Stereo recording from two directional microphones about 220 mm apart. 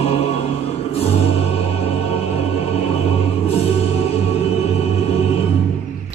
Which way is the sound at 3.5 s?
25° left (ahead or behind).